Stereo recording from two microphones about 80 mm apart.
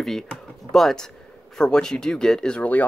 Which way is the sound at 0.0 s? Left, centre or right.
Centre.